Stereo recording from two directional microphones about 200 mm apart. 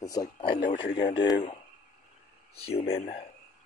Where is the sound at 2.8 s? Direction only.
30° left (ahead or behind).